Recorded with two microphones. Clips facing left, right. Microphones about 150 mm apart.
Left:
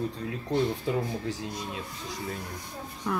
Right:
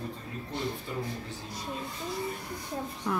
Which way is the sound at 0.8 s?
90° left.